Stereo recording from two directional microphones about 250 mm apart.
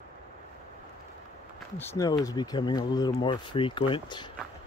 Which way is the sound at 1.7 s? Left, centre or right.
Centre.